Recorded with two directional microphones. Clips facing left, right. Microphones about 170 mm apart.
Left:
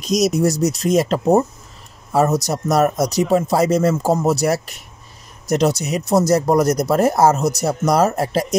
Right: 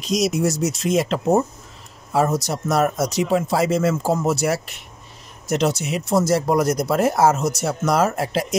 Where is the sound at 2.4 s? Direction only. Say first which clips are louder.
Left 3 dB; 40° left (ahead or behind).